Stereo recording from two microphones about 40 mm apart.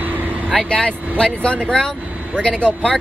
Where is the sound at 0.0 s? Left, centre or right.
Right.